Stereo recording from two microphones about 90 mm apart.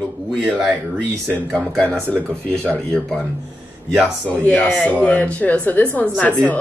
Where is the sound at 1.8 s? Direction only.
15° left (ahead or behind).